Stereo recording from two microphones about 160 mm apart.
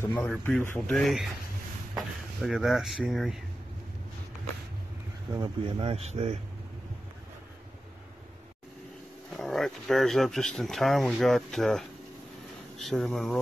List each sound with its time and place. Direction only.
0.0 s speech: 10° left (ahead or behind)
5.3 s speech: 30° right (ahead or behind)
9.4 s speech: centre (ahead or behind)